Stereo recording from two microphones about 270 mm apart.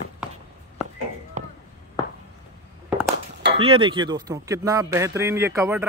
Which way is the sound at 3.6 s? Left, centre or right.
Centre.